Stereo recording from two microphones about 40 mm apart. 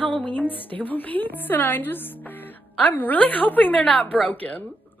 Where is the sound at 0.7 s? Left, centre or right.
Left.